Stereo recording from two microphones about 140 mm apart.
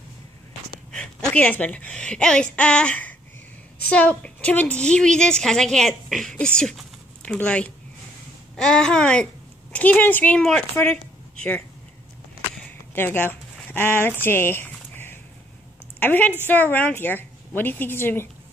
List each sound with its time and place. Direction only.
0.9 s a woman's voice: 10° left (ahead or behind)
12.9 s speech: 15° left (ahead or behind)
14.2 s a sound: 15° left (ahead or behind)
16.0 s a woman's voice: 10° left (ahead or behind)